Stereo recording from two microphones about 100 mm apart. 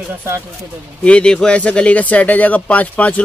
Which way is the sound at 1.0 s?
10° left (ahead or behind).